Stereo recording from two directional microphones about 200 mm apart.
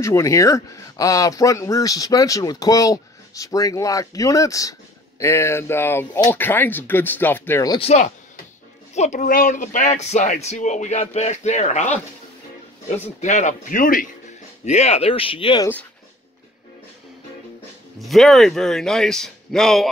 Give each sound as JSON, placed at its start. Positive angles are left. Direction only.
{"t": 0.0, "sound": "speech", "side_deg": 15}
{"t": 8.9, "sound": "speech", "side_deg": 35}
{"t": 13.0, "sound": "speech", "side_deg": 35}
{"t": 14.6, "sound": "speech", "side_deg": 35}
{"t": 17.9, "sound": "speech", "side_deg": 0}